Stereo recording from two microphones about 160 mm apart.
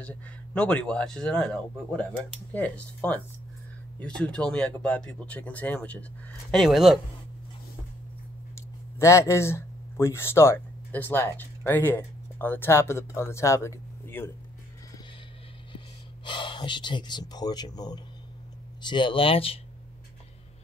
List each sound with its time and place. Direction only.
0.0 s speech: 5° left (ahead or behind)
6.5 s speech: centre (ahead or behind)
8.5 s speech: 15° left (ahead or behind)
16.3 s speech: 30° left (ahead or behind)